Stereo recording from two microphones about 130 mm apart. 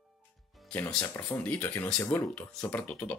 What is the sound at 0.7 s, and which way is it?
Speech, 10° left (ahead or behind).